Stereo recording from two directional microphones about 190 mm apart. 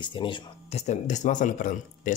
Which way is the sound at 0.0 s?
25° left (ahead or behind).